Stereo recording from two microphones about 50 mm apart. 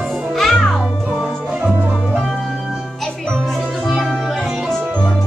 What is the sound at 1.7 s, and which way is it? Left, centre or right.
Music, right.